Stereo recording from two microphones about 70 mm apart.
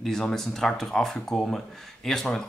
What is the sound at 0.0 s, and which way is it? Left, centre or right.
Speech, centre.